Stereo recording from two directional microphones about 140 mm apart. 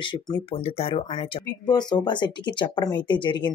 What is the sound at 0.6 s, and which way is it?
Speech, 45° left (ahead or behind).